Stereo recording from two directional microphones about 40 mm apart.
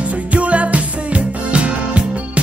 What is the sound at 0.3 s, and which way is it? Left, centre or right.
Music, right.